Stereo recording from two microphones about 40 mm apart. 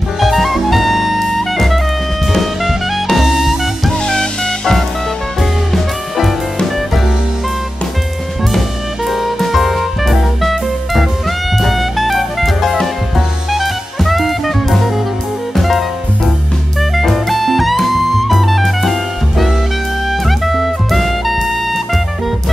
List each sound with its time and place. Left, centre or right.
0.2 s jazz: centre
2.3 s music: centre
4.0 s music: centre
5.4 s music: centre
8.5 s music: centre
13.5 s jazz: centre
15.5 s music: centre
16.9 s music: centre